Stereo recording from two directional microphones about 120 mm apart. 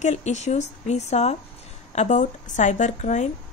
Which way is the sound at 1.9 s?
80° left.